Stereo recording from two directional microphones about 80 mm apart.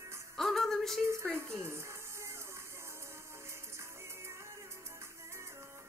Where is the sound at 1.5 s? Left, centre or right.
Right.